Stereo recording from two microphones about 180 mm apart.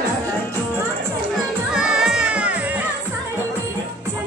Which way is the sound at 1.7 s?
5° right (ahead or behind).